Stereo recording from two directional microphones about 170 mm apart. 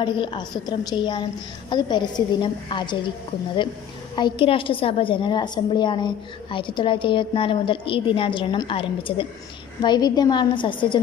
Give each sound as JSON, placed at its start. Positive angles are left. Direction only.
{"t": 0.0, "sound": "a woman's voice", "side_deg": 30}
{"t": 4.1, "sound": "a woman's voice", "side_deg": 30}